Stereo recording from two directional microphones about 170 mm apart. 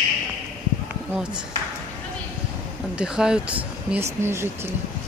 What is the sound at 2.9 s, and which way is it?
Speech, 5° right (ahead or behind).